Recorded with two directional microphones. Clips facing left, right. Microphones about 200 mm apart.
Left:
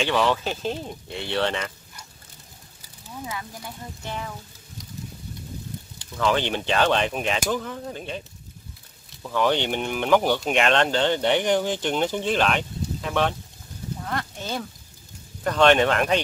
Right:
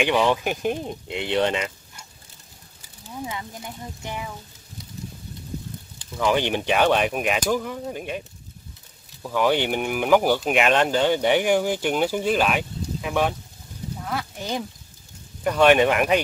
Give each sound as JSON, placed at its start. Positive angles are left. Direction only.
{"t": 0.0, "sound": "speech", "side_deg": -15}
{"t": 3.3, "sound": "speech", "side_deg": -20}
{"t": 6.1, "sound": "speech", "side_deg": -15}
{"t": 9.2, "sound": "speech", "side_deg": -10}
{"t": 14.0, "sound": "a sound", "side_deg": -5}
{"t": 15.4, "sound": "speech", "side_deg": -10}